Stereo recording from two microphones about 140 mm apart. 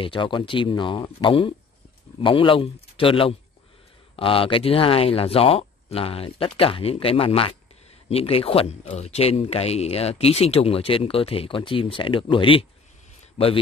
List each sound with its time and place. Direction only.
0.0 s speech: 35° left (ahead or behind)
13.4 s speech: 50° left (ahead or behind)